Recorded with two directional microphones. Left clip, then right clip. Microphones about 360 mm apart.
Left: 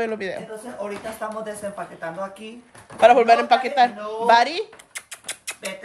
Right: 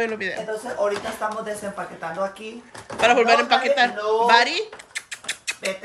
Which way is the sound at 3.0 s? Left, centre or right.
Centre.